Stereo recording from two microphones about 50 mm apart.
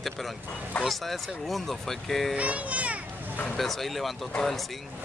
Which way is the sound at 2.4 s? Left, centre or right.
Right.